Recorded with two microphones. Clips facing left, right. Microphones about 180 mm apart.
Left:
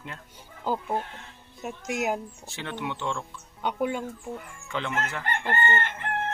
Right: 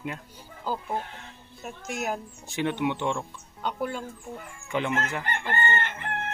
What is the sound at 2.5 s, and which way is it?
Speech, 20° right (ahead or behind).